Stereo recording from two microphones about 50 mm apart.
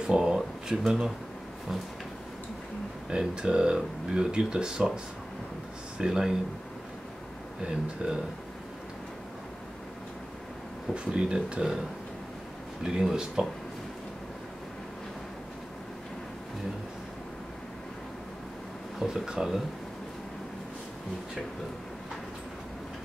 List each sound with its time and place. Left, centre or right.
0.0 s speech: centre
3.1 s speech: centre
5.9 s speech: centre
7.6 s speech: centre
11.1 s speech: centre
12.8 s speech: centre
18.9 s speech: centre